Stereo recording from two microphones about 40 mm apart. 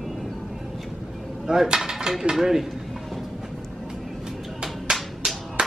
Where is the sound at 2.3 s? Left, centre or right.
Centre.